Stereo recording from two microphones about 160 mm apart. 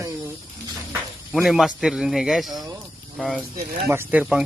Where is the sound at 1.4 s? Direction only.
5° right (ahead or behind).